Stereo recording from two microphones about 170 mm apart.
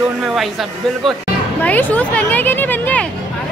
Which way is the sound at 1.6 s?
10° left (ahead or behind).